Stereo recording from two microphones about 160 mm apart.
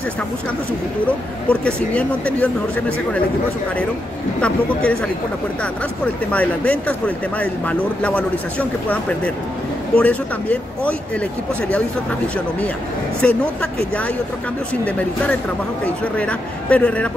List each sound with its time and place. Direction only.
1.0 s speech: 10° left (ahead or behind)
4.4 s speech: 5° left (ahead or behind)
6.3 s speech: 10° left (ahead or behind)
13.2 s speech: 10° left (ahead or behind)